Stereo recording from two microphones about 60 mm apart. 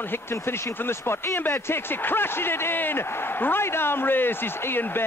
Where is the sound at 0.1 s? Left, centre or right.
Left.